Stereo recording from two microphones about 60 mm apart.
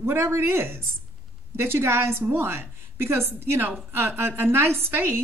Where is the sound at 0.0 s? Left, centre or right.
Right.